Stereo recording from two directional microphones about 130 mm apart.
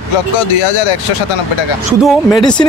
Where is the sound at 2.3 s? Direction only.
35° left (ahead or behind).